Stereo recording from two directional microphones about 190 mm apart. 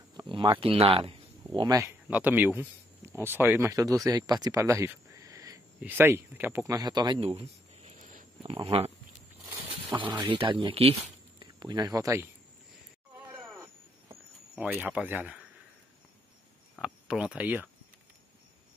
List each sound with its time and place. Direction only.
0.1 s speech: 25° right (ahead or behind)
6.7 s a sound: 20° right (ahead or behind); by 8.3 s 40° right (ahead or behind)
8.4 s speech: 30° right (ahead or behind)
9.9 s speech: 25° right (ahead or behind)
13.5 s a sound: 15° right (ahead or behind)
14.5 s speech: 5° right (ahead or behind)
16.8 s speech: 5° right (ahead or behind)